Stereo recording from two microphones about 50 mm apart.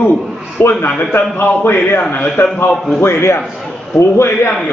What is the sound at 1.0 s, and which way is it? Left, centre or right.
Speech, left.